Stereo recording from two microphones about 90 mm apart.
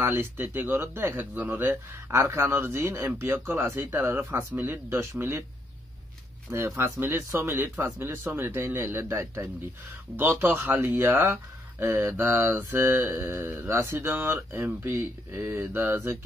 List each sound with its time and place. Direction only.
0.0 s speech: 25° right (ahead or behind)
6.8 s speech: 25° right (ahead or behind)